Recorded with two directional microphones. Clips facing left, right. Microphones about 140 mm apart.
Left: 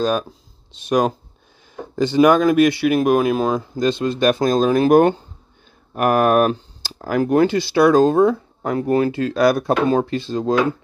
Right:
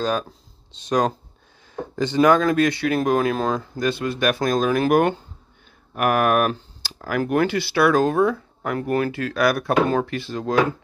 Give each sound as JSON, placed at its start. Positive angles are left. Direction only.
{"t": 0.8, "sound": "speech", "side_deg": 10}